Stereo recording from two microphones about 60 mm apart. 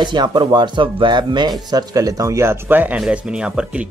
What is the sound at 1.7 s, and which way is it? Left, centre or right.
Speech, right.